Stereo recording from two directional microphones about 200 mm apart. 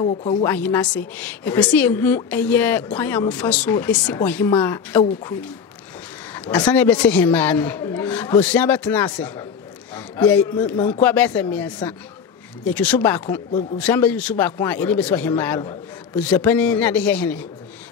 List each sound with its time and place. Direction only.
0.0 s speech: 30° left (ahead or behind)
0.4 s a woman's voice: 10° left (ahead or behind)
6.3 s a sound: 5° left (ahead or behind)
6.7 s a woman's voice: 10° left (ahead or behind)